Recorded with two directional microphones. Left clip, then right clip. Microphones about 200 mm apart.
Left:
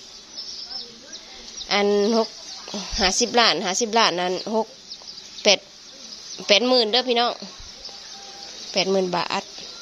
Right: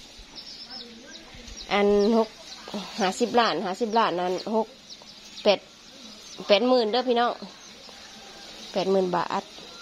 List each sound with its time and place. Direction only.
1.7 s a woman's voice: centre (ahead or behind)
2.7 s a sound: centre (ahead or behind)
3.3 s a woman's voice: 5° left (ahead or behind)
6.4 s a woman's voice: 5° left (ahead or behind)
8.7 s a woman's voice: centre (ahead or behind)